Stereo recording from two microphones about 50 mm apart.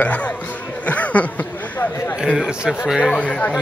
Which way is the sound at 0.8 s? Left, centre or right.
Left.